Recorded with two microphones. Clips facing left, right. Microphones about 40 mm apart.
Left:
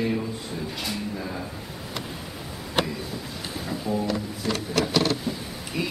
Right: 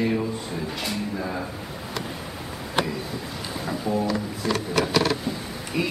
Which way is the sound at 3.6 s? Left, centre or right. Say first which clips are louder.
Right 2 dB; centre.